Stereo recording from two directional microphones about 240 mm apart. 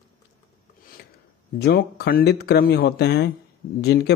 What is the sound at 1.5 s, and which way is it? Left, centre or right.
A man's voice, left.